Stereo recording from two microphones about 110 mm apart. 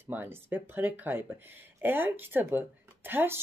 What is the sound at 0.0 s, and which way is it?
Speech, 15° right (ahead or behind).